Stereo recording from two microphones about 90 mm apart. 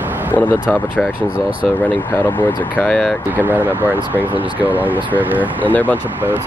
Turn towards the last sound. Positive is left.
turn(degrees=20)  # may be behind; listen again after turning